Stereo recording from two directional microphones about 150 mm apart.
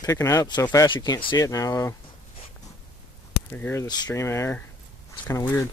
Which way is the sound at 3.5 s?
15° left (ahead or behind).